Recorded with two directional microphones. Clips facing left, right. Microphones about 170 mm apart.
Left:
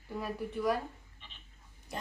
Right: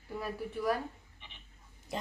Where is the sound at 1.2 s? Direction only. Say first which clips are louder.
Right 2 dB; 15° right (ahead or behind).